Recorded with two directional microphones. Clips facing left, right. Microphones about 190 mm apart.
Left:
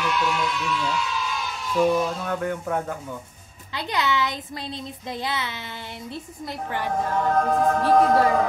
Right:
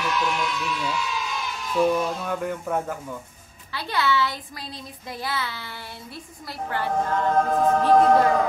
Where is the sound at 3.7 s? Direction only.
20° left (ahead or behind).